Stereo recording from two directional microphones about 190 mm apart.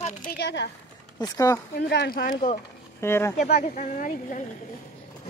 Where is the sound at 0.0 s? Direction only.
45° left (ahead or behind).